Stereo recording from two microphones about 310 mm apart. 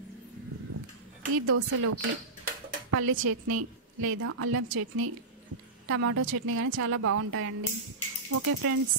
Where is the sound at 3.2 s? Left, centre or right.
Right.